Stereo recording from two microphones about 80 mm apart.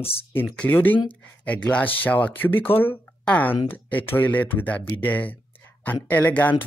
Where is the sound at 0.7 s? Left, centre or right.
Left.